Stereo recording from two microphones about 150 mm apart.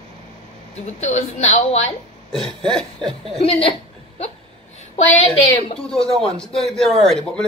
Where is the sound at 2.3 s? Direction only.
5° left (ahead or behind).